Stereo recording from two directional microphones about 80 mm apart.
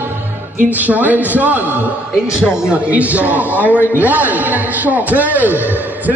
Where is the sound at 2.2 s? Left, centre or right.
Centre.